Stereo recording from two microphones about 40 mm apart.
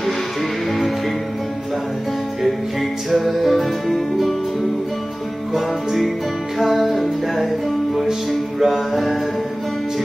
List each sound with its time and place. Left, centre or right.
3.3 s music: centre
5.5 s music: centre